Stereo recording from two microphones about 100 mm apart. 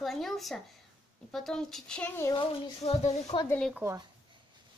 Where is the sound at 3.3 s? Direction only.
65° left (ahead or behind).